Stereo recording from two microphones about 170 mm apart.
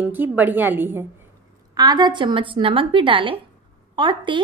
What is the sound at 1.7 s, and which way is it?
A woman's voice, 25° right (ahead or behind).